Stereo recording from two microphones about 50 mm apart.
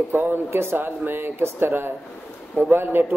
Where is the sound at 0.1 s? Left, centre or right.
Right.